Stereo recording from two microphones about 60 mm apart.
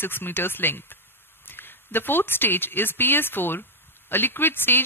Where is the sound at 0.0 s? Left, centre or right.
Left.